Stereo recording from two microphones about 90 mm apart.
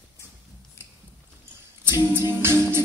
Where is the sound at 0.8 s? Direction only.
30° left (ahead or behind).